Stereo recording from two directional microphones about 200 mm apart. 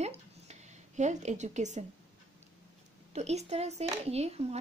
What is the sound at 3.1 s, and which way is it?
A woman's voice, 35° right (ahead or behind).